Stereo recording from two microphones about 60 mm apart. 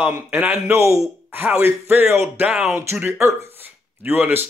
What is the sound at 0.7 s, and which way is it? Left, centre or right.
Speech, right.